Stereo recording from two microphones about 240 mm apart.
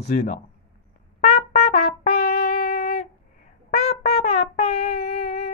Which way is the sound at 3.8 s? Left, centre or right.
Left.